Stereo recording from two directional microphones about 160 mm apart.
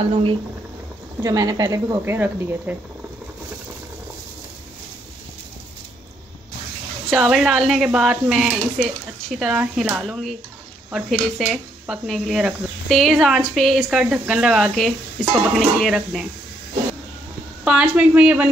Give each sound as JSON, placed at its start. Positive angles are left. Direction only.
{"t": 1.2, "sound": "speech", "side_deg": -20}
{"t": 7.1, "sound": "speech", "side_deg": -5}
{"t": 17.6, "sound": "a woman's voice", "side_deg": -5}